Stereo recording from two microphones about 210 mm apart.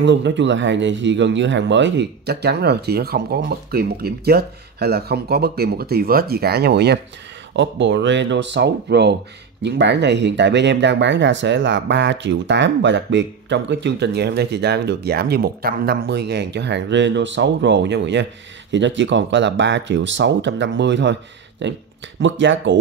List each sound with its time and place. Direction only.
0.0 s speech: 60° right (ahead or behind)